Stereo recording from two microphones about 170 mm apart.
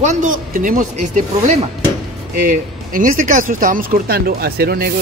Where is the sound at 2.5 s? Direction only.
50° right (ahead or behind).